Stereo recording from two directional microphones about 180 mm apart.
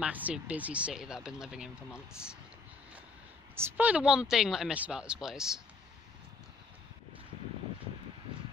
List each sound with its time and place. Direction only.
0.0 s speech: 10° right (ahead or behind)
3.5 s speech: 10° right (ahead or behind)